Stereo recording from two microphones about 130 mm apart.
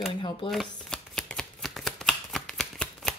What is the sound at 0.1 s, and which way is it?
Speech, 40° left (ahead or behind).